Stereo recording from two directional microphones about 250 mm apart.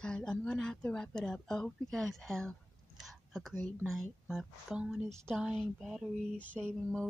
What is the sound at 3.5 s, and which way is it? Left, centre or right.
Speech, centre.